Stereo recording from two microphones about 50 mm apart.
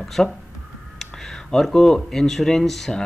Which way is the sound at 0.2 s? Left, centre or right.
Centre.